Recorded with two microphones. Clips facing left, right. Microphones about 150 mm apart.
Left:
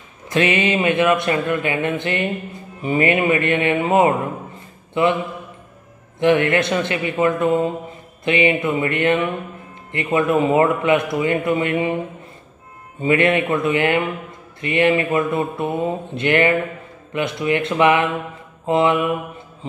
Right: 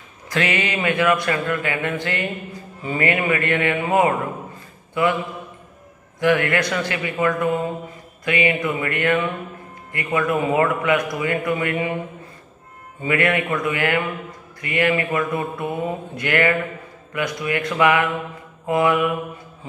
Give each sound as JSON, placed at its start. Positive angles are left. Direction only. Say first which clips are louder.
{"t": 0.3, "sound": "speech", "louder": "left 5 dB", "side_deg": 20}
{"t": 6.1, "sound": "speech", "louder": "left 3 dB", "side_deg": 20}
{"t": 13.0, "sound": "speech", "louder": "left 4 dB", "side_deg": 25}